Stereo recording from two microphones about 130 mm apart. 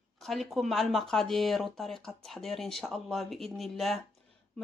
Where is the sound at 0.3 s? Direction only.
Centre (ahead or behind).